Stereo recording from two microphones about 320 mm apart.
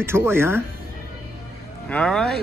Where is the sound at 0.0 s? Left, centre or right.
Centre.